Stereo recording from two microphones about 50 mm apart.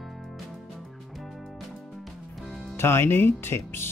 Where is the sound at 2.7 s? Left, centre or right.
Left.